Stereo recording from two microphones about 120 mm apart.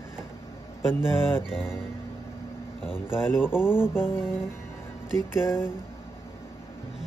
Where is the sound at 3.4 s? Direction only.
5° right (ahead or behind).